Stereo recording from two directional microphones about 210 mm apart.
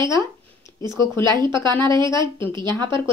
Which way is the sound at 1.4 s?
20° right (ahead or behind).